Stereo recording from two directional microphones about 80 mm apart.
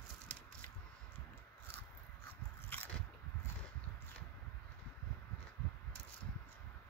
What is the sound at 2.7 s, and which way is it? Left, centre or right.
Biting, left.